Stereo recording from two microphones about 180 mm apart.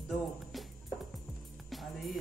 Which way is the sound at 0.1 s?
Centre (ahead or behind).